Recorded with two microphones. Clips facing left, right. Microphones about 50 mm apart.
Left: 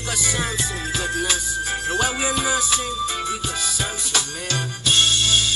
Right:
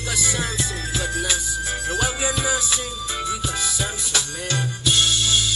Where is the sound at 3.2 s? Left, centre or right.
Left.